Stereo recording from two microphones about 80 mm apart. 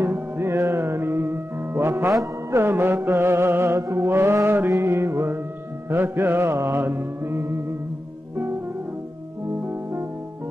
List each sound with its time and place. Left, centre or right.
0.0 s music: right